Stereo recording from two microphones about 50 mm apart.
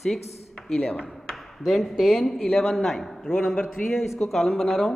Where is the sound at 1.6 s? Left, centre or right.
Centre.